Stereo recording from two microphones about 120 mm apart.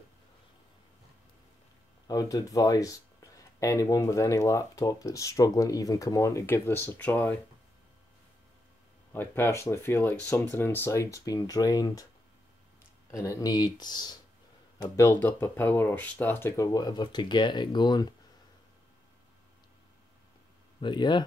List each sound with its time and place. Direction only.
2.0 s speech: 30° left (ahead or behind); by 7.3 s 15° left (ahead or behind)
9.1 s speech: 20° left (ahead or behind)
13.1 s speech: 25° left (ahead or behind)
14.8 s speech: 25° left (ahead or behind)
16.6 s speech: 30° left (ahead or behind)
20.8 s speech: 40° left (ahead or behind)